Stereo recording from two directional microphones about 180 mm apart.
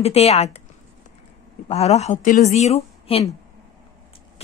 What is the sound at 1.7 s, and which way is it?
Speech, 35° left (ahead or behind).